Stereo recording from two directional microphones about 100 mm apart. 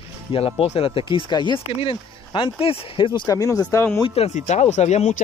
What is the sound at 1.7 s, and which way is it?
Speech, 65° left (ahead or behind).